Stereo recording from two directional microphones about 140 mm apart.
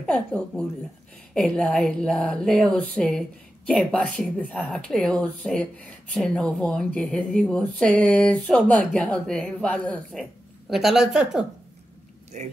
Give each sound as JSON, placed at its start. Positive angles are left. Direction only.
{"t": 0.0, "sound": "a sound", "side_deg": 5}
{"t": 10.7, "sound": "speech", "side_deg": -5}
{"t": 12.3, "sound": "speech", "side_deg": -55}